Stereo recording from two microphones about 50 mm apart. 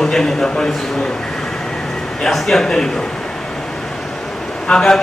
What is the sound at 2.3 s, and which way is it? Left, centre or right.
Speech, centre.